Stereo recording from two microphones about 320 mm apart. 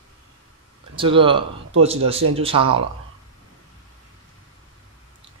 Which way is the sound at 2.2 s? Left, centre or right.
Right.